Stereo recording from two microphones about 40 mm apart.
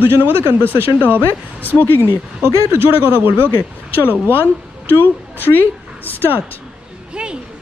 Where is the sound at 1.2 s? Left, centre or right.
Left.